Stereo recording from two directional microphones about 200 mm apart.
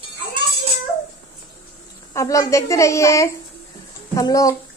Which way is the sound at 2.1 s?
15° left (ahead or behind).